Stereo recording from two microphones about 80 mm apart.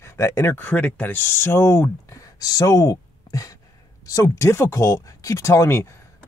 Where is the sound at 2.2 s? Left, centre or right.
Left.